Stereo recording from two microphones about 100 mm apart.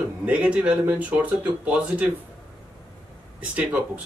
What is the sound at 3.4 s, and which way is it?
Speech, 15° right (ahead or behind).